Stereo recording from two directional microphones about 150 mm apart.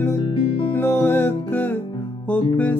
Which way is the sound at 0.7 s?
15° left (ahead or behind).